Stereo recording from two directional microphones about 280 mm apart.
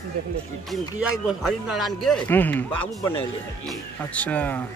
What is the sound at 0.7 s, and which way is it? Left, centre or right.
Speech, centre.